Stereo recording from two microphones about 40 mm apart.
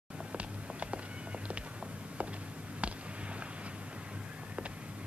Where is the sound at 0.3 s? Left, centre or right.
Right.